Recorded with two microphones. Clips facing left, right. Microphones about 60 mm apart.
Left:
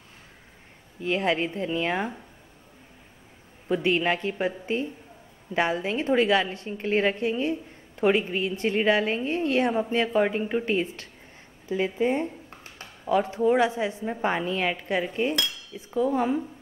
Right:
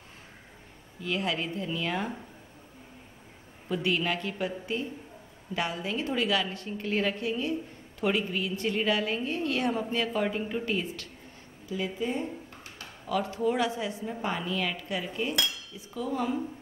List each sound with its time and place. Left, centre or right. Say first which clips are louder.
1.0 s a woman's voice: left 6 dB; left
3.6 s a woman's voice: left 5 dB; left
11.7 s a woman's voice: left 7 dB; left
12.4 s a woman's voice: left 1 dB; left